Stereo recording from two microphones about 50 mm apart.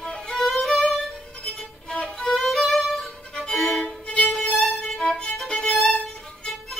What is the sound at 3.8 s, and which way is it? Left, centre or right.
Violin, left.